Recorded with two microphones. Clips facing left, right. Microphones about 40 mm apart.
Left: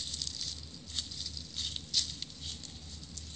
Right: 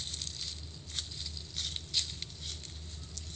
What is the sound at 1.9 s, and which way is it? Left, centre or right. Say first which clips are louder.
Patter: left 1 dB; right.